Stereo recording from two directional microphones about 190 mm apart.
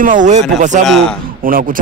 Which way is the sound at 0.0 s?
45° right (ahead or behind).